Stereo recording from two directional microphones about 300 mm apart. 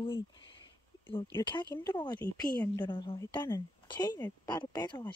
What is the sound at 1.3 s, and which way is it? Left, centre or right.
Speech, centre.